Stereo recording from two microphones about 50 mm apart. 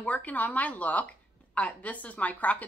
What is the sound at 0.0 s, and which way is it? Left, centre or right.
A woman's voice, left.